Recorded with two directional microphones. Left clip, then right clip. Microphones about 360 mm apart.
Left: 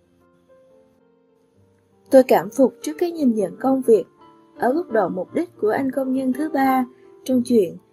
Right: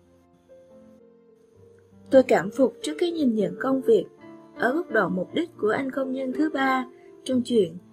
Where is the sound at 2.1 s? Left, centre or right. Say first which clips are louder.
Left 4 dB; centre.